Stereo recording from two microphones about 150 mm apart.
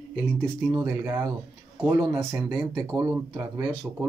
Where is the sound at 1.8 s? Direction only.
15° right (ahead or behind).